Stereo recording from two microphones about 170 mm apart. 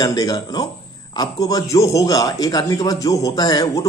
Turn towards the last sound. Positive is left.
turn(degrees=20)  # may be behind; listen again after turning